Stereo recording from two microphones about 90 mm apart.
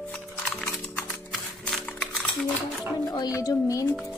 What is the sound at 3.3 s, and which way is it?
Speech, 40° left (ahead or behind).